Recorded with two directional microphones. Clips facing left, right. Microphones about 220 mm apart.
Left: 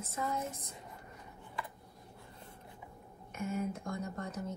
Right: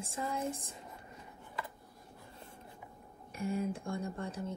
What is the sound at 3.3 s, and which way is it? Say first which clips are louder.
Speech: right 1 dB; 30° right (ahead or behind).